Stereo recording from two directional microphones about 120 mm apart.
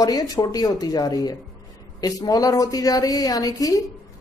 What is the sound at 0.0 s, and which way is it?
A woman's voice, 30° left (ahead or behind).